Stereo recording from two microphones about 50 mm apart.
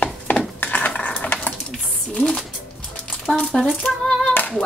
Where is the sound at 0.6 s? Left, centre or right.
Left.